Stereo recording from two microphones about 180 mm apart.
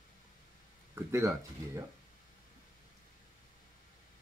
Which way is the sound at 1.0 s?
15° right (ahead or behind).